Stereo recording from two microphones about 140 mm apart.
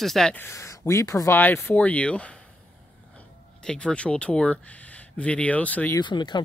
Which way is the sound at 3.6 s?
5° left (ahead or behind).